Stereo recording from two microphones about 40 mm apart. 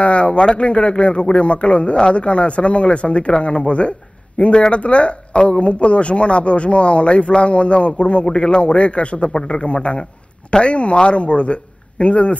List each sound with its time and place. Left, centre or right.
0.0 s speech: left